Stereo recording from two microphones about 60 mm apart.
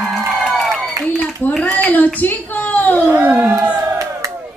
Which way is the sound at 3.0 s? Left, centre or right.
Right.